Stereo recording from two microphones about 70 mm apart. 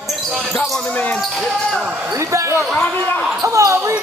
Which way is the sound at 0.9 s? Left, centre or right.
Left.